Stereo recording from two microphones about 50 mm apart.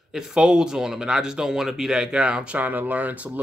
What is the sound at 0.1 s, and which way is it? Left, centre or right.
Speech, centre.